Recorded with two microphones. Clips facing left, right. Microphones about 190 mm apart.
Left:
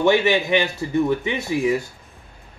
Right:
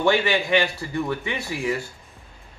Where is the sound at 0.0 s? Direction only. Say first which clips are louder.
Left 3 dB; 20° left (ahead or behind).